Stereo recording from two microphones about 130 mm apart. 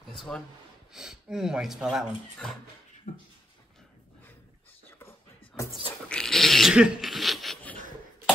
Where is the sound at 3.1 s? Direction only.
80° left.